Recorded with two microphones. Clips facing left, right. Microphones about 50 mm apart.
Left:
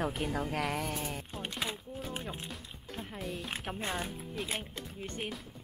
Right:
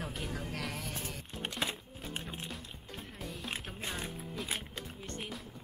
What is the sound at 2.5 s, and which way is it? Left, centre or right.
Music, centre.